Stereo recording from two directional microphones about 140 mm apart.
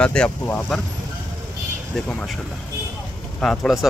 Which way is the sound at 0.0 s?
5° left (ahead or behind).